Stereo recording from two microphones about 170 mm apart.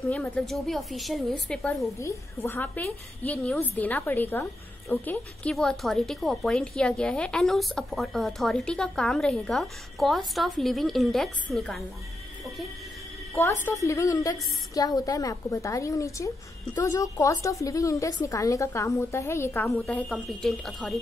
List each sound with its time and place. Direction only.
0.0 s a woman's voice: centre (ahead or behind)
2.0 s a woman's voice: 15° left (ahead or behind)
13.3 s a woman's voice: 15° left (ahead or behind); by 21.0 s centre (ahead or behind)